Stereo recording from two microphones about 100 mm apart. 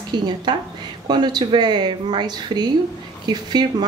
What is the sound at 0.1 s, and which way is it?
A woman's voice, 45° right (ahead or behind).